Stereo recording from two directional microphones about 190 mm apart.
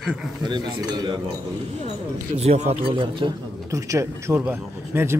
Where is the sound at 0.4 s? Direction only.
20° right (ahead or behind).